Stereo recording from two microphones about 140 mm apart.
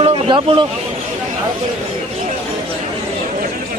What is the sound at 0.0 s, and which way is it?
Vehicle, 40° right (ahead or behind).